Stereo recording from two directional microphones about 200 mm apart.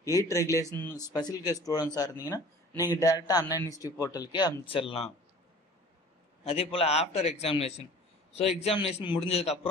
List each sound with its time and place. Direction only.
0.0 s speech: 15° left (ahead or behind)
6.4 s a man's voice: 30° left (ahead or behind)